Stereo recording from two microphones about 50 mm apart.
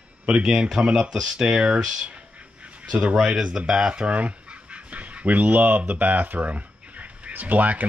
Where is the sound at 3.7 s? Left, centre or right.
Centre; by 7.9 s right.